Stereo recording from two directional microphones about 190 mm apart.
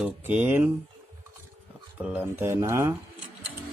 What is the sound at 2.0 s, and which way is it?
Speech, 10° right (ahead or behind).